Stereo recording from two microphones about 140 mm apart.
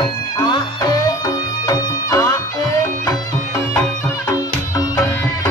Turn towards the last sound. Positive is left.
turn(degrees=25)  # may be behind; listen again after turning